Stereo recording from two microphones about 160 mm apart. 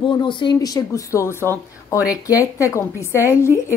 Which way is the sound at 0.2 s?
30° left (ahead or behind).